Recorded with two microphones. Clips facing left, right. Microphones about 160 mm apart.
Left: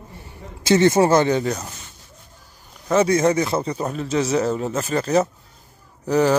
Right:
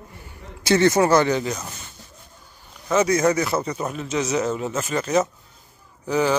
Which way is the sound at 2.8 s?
30° left (ahead or behind).